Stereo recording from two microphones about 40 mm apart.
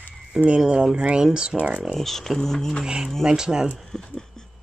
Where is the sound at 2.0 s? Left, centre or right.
Centre.